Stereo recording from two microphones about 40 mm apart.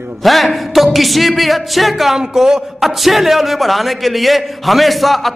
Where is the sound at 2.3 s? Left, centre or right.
Centre.